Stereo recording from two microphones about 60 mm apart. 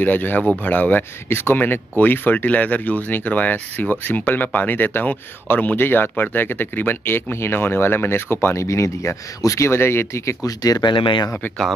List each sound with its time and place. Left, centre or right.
0.0 s speech: left
8.6 s speech: left
9.7 s speech: left
10.4 s speech: left